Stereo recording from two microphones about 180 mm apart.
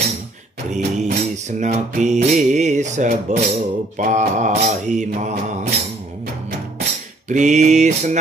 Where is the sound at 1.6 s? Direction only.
40° right (ahead or behind).